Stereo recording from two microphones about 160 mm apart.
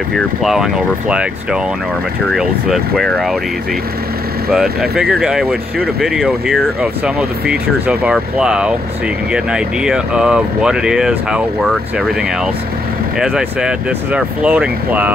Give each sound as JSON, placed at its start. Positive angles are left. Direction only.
{"t": 0.1, "sound": "speech", "side_deg": 0}
{"t": 4.5, "sound": "speech", "side_deg": -5}
{"t": 13.2, "sound": "speech", "side_deg": -5}